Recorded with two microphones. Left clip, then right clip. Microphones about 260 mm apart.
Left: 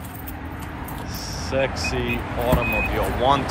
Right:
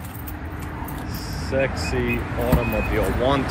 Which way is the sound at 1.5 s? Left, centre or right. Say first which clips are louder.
Even; centre.